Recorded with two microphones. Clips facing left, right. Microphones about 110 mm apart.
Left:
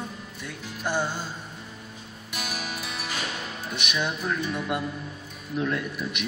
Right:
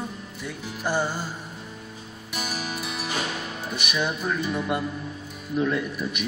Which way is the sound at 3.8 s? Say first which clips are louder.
Right 2 dB; 5° right (ahead or behind).